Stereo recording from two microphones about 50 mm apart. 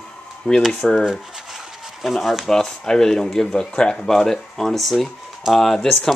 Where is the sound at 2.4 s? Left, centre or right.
Centre.